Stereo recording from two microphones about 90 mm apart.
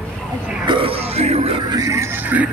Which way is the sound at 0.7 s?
75° right (ahead or behind).